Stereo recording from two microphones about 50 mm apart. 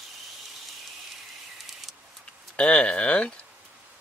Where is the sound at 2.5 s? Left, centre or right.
Centre.